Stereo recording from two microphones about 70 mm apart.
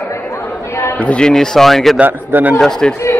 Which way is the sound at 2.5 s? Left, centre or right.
Centre.